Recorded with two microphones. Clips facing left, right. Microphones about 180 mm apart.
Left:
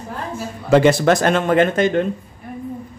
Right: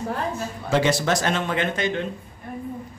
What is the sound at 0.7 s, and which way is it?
A man's voice, 55° left (ahead or behind).